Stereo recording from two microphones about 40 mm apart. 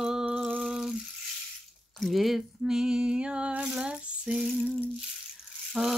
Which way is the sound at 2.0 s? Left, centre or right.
Centre.